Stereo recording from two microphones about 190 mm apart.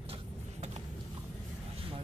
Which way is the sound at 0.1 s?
35° right (ahead or behind).